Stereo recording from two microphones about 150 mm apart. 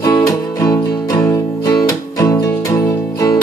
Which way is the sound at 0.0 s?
25° left (ahead or behind).